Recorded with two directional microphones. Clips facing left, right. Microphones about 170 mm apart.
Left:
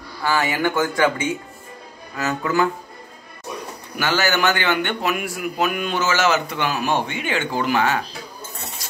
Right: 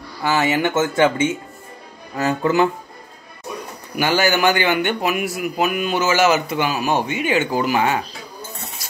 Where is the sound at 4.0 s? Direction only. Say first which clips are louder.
Right 3 dB; 15° right (ahead or behind).